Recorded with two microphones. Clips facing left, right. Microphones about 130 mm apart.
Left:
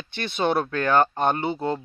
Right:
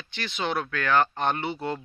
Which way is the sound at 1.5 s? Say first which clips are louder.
Left 4 dB; 30° left (ahead or behind).